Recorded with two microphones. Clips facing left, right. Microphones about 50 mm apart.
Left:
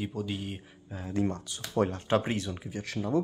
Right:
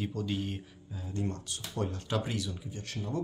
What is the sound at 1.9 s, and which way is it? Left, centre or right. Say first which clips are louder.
Speech: left 6 dB; left.